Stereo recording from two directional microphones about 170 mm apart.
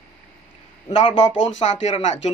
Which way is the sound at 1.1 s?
35° left (ahead or behind).